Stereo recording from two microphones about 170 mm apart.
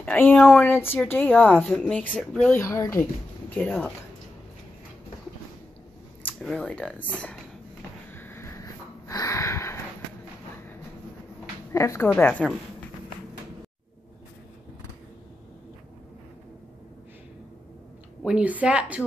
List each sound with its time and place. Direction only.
0.0 s speech: 10° left (ahead or behind)
2.6 s speech: 15° left (ahead or behind)
6.2 s speech: 5° left (ahead or behind)
8.1 s a sound: 10° left (ahead or behind)
11.7 s speech: 15° left (ahead or behind)
18.2 s speech: 5° right (ahead or behind)